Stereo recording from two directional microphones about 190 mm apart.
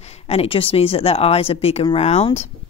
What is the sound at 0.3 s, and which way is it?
Speech, 30° left (ahead or behind).